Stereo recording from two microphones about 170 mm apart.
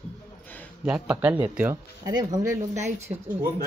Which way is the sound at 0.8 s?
5° right (ahead or behind).